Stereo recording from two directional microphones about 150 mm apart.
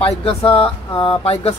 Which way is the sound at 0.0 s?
40° left (ahead or behind).